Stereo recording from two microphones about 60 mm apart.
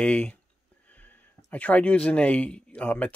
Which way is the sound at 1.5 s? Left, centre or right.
Left.